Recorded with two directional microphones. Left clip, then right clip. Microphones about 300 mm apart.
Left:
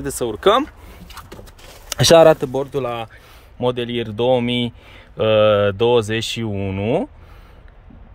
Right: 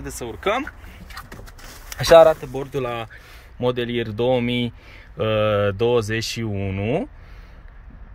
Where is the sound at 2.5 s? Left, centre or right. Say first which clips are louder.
Left 4 dB; centre.